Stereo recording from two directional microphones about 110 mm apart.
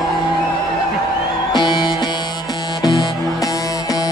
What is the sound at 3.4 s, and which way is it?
Music, 35° left (ahead or behind).